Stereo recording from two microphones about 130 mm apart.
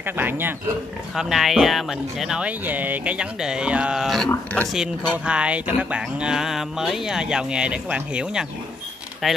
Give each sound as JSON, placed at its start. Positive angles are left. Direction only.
{"t": 0.0, "sound": "speech", "side_deg": -15}
{"t": 1.1, "sound": "speech", "side_deg": 0}